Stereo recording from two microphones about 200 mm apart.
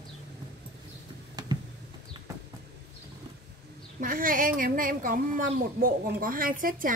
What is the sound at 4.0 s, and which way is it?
Speech, 45° right (ahead or behind).